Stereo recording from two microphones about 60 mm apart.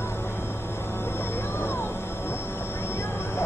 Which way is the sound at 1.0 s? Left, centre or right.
Left.